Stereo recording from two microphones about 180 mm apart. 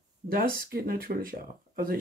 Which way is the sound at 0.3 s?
55° right (ahead or behind).